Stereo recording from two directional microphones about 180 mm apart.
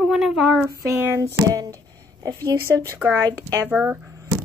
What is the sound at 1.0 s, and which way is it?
A woman's voice, 15° right (ahead or behind).